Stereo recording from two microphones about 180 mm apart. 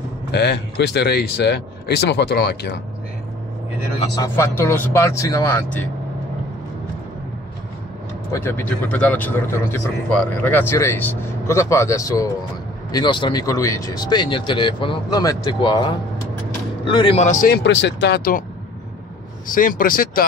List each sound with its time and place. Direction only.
0.3 s speech: 65° left (ahead or behind)
4.1 s speech: 15° left (ahead or behind)
8.3 s speech: 15° left (ahead or behind); by 17.6 s 45° left (ahead or behind)
17.6 s speech: 75° left (ahead or behind)
19.4 s speech: 50° left (ahead or behind)